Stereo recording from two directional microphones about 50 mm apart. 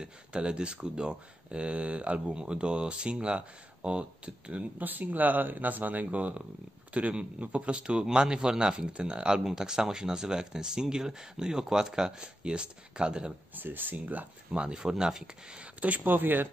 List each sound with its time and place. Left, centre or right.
0.0 s speech: centre
4.8 s speech: right; by 13.3 s centre
13.6 s speech: right; by 15.6 s centre
15.6 s speech: right